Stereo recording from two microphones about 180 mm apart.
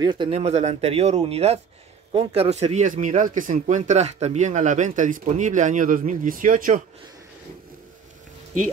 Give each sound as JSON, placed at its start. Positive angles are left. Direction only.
{"t": 0.0, "sound": "speech", "side_deg": -25}